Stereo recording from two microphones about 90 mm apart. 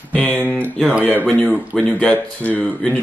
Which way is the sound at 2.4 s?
15° left (ahead or behind).